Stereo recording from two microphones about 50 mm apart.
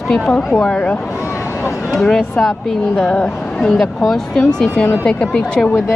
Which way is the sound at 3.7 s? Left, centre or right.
Centre.